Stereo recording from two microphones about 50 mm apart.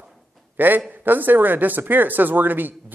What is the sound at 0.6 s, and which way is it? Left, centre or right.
A man's voice, right.